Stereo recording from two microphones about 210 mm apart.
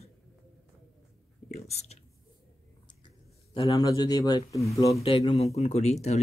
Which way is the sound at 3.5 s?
20° left (ahead or behind).